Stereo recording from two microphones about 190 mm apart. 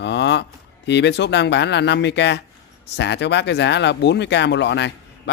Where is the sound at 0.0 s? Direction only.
65° left (ahead or behind).